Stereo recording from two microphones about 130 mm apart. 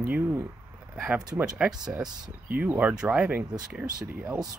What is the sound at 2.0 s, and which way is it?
Speech, 30° right (ahead or behind).